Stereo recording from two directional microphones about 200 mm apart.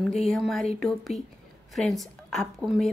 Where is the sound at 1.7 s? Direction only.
Centre (ahead or behind).